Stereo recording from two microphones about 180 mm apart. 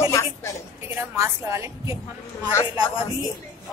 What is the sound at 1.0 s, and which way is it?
A woman's voice, 15° right (ahead or behind).